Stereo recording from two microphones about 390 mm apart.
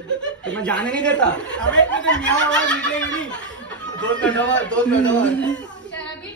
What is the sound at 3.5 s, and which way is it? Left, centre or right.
Chuckle, centre.